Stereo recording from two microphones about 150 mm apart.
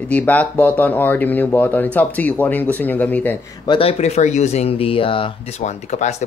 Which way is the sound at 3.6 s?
30° left (ahead or behind).